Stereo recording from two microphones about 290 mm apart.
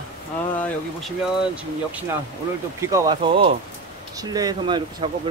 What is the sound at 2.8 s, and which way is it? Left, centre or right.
Speech, centre.